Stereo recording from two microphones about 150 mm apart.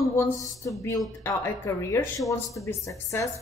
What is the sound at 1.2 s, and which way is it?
Speech, 20° left (ahead or behind).